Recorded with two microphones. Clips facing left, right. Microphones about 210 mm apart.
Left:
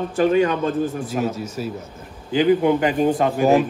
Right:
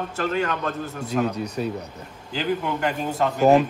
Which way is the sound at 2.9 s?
5° left (ahead or behind).